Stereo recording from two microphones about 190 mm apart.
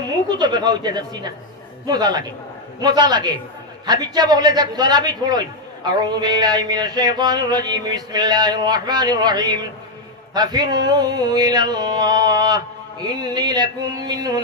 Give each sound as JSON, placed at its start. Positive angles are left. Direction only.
{"t": 0.1, "sound": "a man's voice", "side_deg": -20}